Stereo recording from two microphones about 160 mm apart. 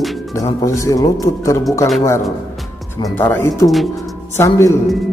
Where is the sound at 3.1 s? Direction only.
15° left (ahead or behind).